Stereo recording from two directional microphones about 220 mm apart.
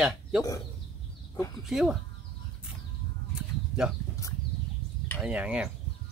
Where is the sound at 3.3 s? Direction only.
5° right (ahead or behind).